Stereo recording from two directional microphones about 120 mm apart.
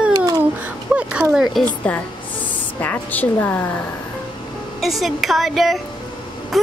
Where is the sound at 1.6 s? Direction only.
15° left (ahead or behind).